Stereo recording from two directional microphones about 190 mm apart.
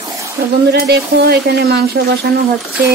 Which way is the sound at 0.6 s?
55° right (ahead or behind).